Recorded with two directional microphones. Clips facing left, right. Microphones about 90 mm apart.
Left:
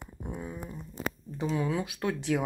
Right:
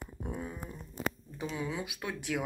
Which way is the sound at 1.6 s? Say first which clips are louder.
Left 6 dB; 45° left (ahead or behind).